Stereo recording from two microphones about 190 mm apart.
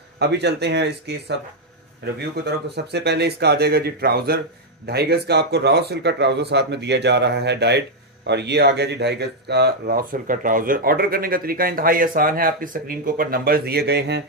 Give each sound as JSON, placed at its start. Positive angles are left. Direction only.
{"t": 0.2, "sound": "speech", "side_deg": -60}
{"t": 2.4, "sound": "speech", "side_deg": -60}